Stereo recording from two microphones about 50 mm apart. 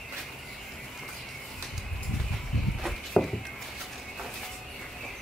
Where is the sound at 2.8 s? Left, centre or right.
Centre.